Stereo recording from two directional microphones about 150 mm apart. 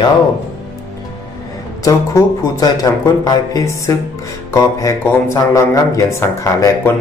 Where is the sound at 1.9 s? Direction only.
25° left (ahead or behind).